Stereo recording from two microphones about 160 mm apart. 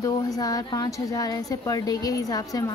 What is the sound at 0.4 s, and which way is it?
Speech, 25° left (ahead or behind).